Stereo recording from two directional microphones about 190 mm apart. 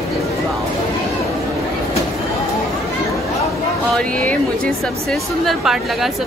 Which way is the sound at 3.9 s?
5° left (ahead or behind).